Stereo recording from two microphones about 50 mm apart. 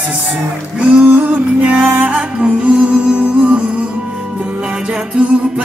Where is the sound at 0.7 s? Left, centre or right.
Right.